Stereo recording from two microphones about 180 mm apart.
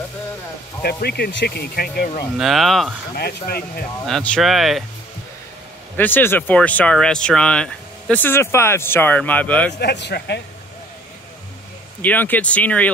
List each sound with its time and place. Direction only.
0.8 s speech: 60° left (ahead or behind)
2.3 s speech: centre (ahead or behind)
3.2 s speech: 60° left (ahead or behind)
4.0 s speech: 5° left (ahead or behind)
5.9 s speech: 10° left (ahead or behind)
9.8 s a man's voice: 70° left (ahead or behind)
12.0 s speech: 10° left (ahead or behind)